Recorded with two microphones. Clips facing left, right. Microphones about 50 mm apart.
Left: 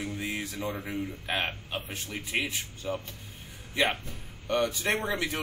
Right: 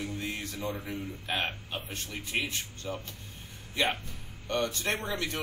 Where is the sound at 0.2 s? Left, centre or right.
Centre.